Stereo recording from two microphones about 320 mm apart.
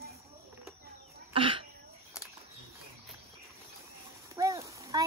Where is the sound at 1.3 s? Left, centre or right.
Centre.